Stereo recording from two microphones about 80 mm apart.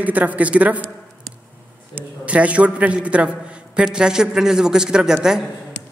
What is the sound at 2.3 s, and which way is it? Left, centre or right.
A man's voice, centre.